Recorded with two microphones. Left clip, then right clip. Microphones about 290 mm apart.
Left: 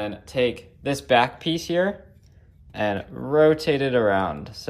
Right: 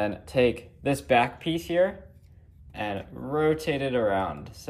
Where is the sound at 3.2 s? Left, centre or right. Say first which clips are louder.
Left 7 dB; centre.